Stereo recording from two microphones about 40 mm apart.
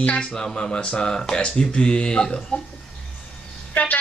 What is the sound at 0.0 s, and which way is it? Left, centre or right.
Speech, left.